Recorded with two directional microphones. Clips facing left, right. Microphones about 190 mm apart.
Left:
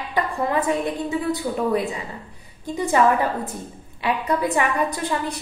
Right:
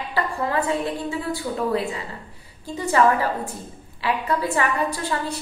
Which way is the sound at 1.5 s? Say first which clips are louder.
Left 2 dB; 20° left (ahead or behind).